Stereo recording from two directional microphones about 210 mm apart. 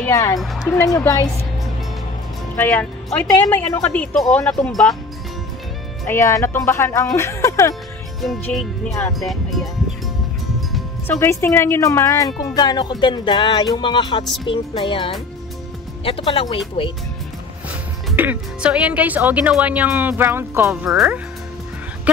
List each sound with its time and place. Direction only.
0.0 s speech: 15° left (ahead or behind)
2.5 s speech: 10° left (ahead or behind)
6.0 s speech: 15° left (ahead or behind)
8.2 s speech: centre (ahead or behind)
10.7 s speech: 10° left (ahead or behind)
17.6 s a woman's voice: 10° right (ahead or behind)